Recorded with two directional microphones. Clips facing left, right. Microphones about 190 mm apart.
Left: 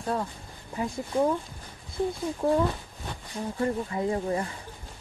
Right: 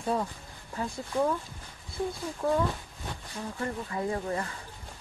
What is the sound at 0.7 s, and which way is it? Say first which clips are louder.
Speech: left 3 dB; 20° left (ahead or behind).